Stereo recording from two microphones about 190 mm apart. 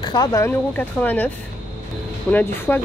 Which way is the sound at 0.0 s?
20° left (ahead or behind).